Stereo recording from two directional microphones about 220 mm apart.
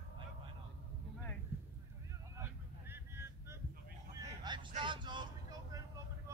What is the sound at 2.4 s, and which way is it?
Vehicle, 10° right (ahead or behind).